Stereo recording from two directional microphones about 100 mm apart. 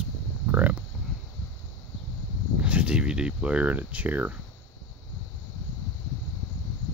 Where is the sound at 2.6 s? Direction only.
10° right (ahead or behind).